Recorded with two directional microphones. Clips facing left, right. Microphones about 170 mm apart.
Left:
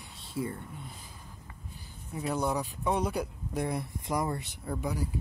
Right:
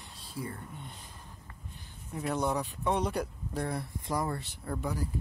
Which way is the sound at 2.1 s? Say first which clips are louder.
Even; 5° left (ahead or behind).